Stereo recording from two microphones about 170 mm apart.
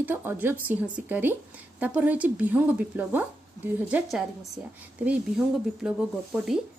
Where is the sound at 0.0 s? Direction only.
15° right (ahead or behind).